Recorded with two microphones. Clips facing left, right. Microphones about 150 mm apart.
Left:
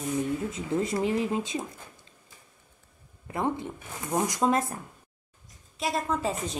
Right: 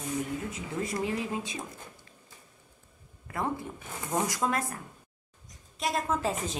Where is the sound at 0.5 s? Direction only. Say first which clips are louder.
Left 5 dB; 25° left (ahead or behind).